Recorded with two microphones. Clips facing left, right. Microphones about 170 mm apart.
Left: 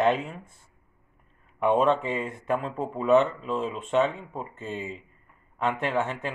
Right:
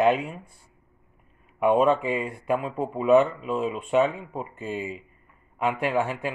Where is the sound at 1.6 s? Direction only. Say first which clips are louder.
Right 2 dB; 10° right (ahead or behind).